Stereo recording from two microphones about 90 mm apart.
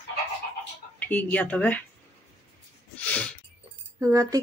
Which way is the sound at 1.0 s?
20° left (ahead or behind).